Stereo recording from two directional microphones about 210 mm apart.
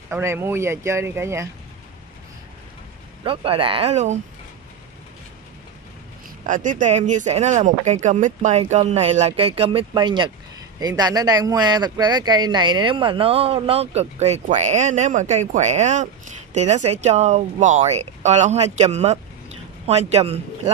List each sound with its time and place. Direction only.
0.1 s speech: 10° right (ahead or behind)
3.3 s a man's voice: 25° right (ahead or behind)
6.4 s a man's voice: 40° right (ahead or behind)